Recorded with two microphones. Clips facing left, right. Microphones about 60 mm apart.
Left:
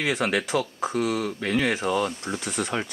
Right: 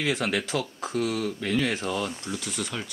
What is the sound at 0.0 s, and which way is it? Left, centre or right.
Speech, centre.